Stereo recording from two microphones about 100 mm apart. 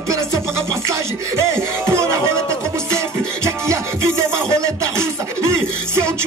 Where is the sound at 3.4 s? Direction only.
30° right (ahead or behind).